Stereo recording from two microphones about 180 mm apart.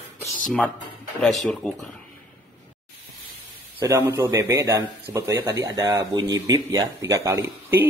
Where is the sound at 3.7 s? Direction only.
15° right (ahead or behind).